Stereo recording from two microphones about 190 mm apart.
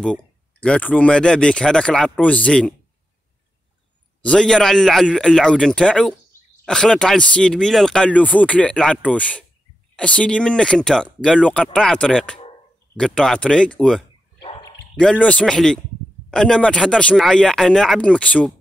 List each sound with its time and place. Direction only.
0.0 s speech: 5° left (ahead or behind)
4.2 s speech: 5° left (ahead or behind)
14.4 s dog: 25° left (ahead or behind)
15.0 s speech: 5° left (ahead or behind)